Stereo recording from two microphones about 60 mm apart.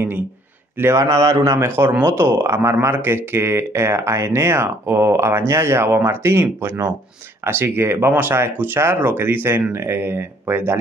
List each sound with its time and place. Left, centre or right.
0.9 s a man's voice: right
1.5 s speech: right